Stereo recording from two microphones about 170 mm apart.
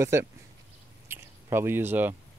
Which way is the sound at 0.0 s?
15° right (ahead or behind).